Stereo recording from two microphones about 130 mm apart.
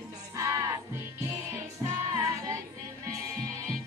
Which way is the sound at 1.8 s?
25° right (ahead or behind).